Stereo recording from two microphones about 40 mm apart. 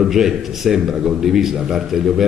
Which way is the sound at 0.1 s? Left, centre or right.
Centre.